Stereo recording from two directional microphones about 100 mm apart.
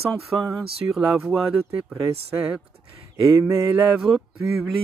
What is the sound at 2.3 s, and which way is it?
Speech, 15° right (ahead or behind).